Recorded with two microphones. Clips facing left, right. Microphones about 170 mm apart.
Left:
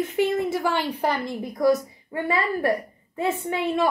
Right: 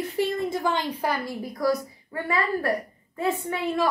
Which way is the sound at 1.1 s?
20° left (ahead or behind).